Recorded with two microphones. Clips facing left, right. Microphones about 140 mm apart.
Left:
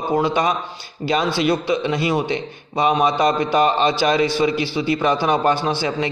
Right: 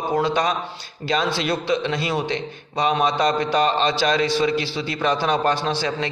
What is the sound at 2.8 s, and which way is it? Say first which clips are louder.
A man's voice: left 3 dB; 15° left (ahead or behind).